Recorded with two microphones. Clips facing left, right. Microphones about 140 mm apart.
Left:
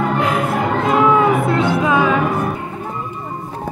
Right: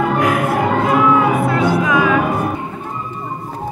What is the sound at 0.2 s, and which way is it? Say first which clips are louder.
Music: right 2 dB; 25° left (ahead or behind).